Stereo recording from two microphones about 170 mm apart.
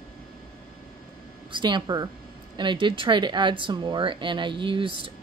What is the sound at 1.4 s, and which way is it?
Speech, 30° right (ahead or behind).